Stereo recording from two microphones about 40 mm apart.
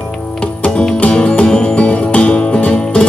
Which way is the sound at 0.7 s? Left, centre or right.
Left.